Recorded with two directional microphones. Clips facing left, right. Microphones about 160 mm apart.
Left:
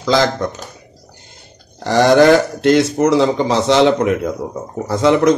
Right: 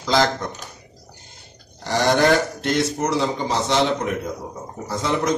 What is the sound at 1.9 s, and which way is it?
A man's voice, 90° left.